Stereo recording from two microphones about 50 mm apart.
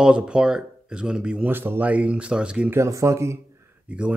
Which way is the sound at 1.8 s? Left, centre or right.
Right.